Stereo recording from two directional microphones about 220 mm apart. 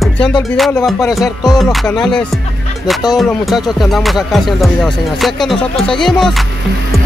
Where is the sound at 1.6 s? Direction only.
Centre (ahead or behind).